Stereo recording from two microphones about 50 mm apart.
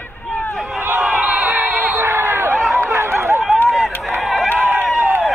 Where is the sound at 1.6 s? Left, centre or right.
Right.